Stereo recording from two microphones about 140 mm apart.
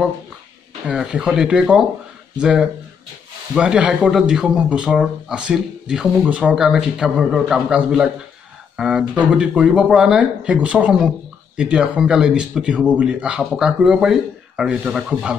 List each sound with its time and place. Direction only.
0.8 s speech: 10° right (ahead or behind)